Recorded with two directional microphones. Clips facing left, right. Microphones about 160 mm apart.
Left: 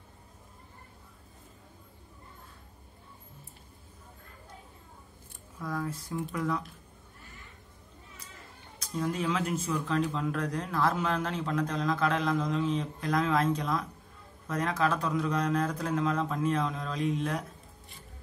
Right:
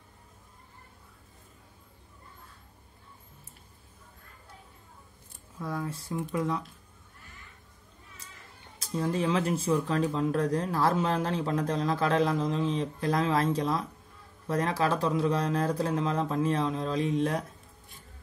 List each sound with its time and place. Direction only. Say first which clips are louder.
5.6 s speech: even; 25° right (ahead or behind)
8.7 s speech: right 2 dB; 30° right (ahead or behind)